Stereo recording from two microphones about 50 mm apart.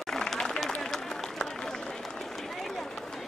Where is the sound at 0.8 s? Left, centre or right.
Centre.